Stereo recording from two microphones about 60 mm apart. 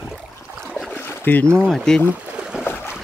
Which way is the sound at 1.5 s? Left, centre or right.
Centre.